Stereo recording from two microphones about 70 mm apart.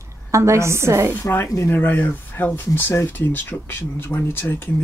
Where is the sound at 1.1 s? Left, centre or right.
Left.